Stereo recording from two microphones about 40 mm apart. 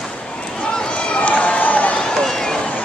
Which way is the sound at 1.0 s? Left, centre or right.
Left.